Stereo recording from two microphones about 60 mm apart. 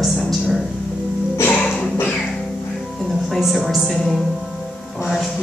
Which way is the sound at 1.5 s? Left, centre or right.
Centre.